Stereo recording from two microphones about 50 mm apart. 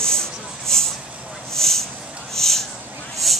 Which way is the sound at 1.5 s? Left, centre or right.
Centre.